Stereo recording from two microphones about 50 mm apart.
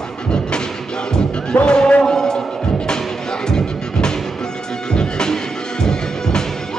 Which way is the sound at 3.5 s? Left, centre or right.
Centre.